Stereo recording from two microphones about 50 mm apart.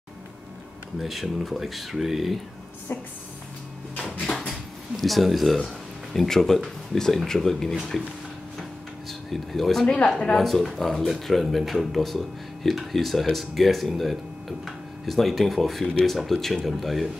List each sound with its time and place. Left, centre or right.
1.0 s speech: centre
2.9 s speech: left
4.0 s drawer open or close: centre
6.1 s speech: centre
9.3 s speech: centre